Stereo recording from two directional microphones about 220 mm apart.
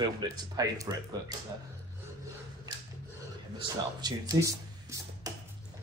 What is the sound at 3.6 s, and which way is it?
Speech, 20° right (ahead or behind).